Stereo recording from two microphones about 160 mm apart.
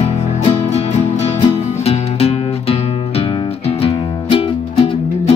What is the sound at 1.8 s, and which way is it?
Music, 40° left (ahead or behind).